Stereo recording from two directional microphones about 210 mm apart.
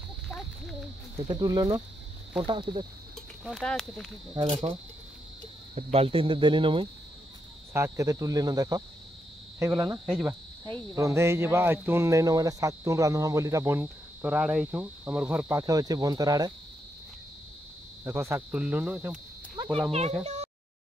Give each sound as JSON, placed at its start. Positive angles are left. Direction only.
{"t": 1.2, "sound": "speech", "side_deg": -20}
{"t": 3.4, "sound": "speech", "side_deg": 0}
{"t": 4.4, "sound": "speech", "side_deg": -20}
{"t": 5.8, "sound": "speech", "side_deg": -30}
{"t": 7.7, "sound": "speech", "side_deg": -15}
{"t": 9.6, "sound": "cricket", "side_deg": -15}
{"t": 11.0, "sound": "speech", "side_deg": -15}
{"t": 18.0, "sound": "speech", "side_deg": -10}
{"t": 19.9, "sound": "speech", "side_deg": -30}